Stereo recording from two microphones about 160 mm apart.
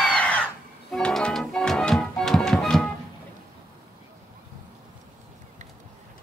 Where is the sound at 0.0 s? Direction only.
5° left (ahead or behind).